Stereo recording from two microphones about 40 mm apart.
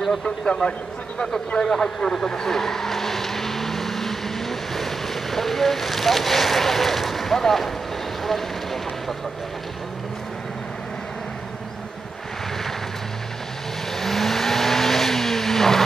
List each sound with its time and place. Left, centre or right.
0.6 s speech: left
1.6 s speech: centre
8.2 s vehicle: centre
13.9 s vehicle: centre